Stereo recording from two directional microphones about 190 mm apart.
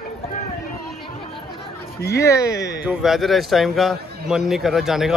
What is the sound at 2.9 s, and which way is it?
A man's voice, centre (ahead or behind).